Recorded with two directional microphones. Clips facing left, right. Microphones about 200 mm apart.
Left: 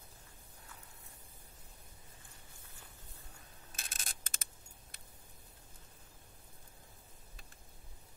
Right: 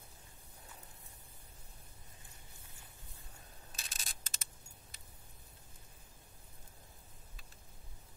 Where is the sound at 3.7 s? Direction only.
55° left (ahead or behind).